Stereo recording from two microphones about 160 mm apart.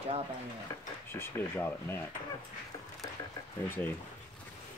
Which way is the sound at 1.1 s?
15° left (ahead or behind).